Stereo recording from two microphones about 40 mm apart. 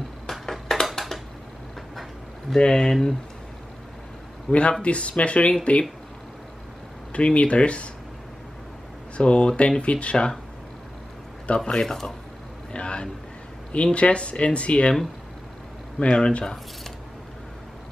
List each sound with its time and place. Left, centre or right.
0.3 s a sound: centre
2.5 s speech: centre
4.5 s speech: left
7.1 s speech: left
9.1 s speech: left
11.4 s speech: left
11.8 s speech: centre
12.7 s speech: left
16.0 s speech: left